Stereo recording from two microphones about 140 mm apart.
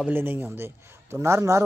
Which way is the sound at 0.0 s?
15° right (ahead or behind).